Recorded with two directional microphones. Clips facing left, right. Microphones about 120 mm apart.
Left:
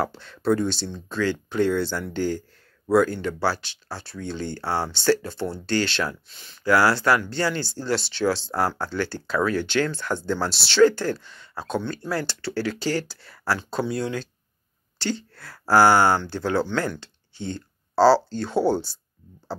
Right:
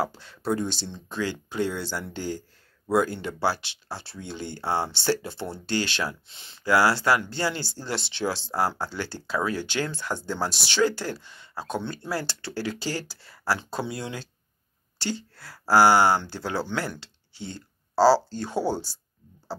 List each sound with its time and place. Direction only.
0.1 s speech: 15° right (ahead or behind)